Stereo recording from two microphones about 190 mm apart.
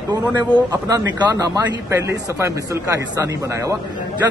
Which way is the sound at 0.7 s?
20° right (ahead or behind).